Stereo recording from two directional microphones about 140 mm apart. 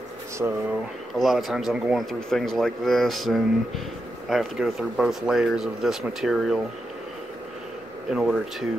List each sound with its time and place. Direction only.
0.4 s speech: 15° right (ahead or behind)
1.1 s speech: centre (ahead or behind)
8.1 s speech: centre (ahead or behind)